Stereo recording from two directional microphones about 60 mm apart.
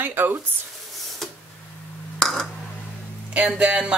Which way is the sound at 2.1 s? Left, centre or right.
Centre.